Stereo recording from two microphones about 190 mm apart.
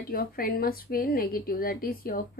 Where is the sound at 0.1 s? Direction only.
50° left (ahead or behind).